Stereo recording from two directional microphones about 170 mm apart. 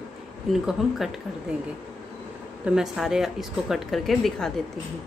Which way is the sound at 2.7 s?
5° right (ahead or behind).